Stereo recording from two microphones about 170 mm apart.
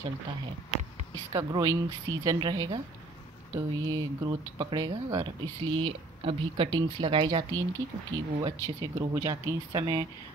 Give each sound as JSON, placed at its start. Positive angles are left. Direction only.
{"t": 1.3, "sound": "speech", "side_deg": -20}